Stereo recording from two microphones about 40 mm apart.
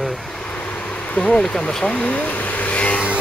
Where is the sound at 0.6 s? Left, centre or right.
Left.